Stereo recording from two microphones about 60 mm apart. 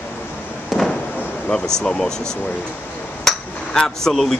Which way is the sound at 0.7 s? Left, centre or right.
Centre.